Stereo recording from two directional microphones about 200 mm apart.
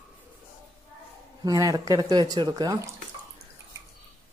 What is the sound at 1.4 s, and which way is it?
Speech, 20° right (ahead or behind).